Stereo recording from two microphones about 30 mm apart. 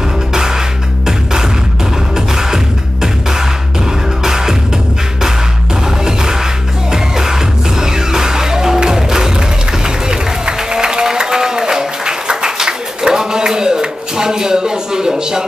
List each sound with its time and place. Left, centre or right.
0.3 s music: right
2.1 s music: centre
6.9 s music: centre
10.0 s a sound: right